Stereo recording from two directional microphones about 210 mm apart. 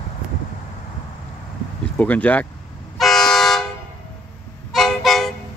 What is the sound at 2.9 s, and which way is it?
Toot, centre (ahead or behind).